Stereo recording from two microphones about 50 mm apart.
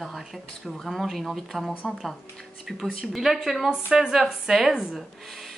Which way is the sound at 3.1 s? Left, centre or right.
Centre.